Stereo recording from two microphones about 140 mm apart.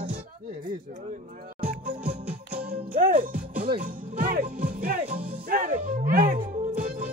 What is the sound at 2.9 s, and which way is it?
Music, 85° right.